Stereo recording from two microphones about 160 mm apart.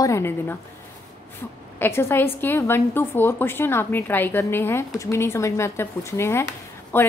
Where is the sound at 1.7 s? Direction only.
15° left (ahead or behind).